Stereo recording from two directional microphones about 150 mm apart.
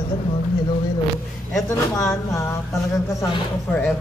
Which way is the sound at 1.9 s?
20° left (ahead or behind).